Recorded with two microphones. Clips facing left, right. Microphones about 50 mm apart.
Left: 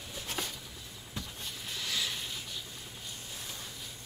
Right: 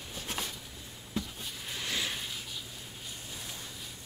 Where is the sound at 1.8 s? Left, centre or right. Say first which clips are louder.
Right 1 dB; right.